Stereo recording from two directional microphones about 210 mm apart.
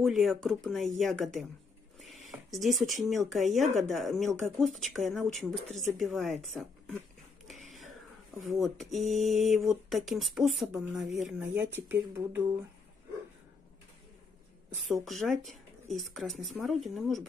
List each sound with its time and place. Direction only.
0.0 s speech: centre (ahead or behind)
3.4 s speech: 35° right (ahead or behind)
3.9 s speech: centre (ahead or behind)
8.4 s speech: centre (ahead or behind)
14.9 s speech: centre (ahead or behind)